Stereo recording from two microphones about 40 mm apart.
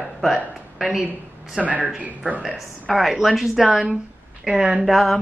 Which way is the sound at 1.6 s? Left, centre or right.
Right.